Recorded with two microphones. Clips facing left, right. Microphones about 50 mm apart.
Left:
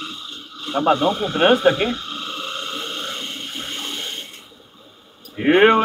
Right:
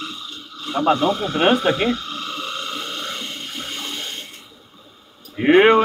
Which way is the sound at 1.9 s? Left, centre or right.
Left.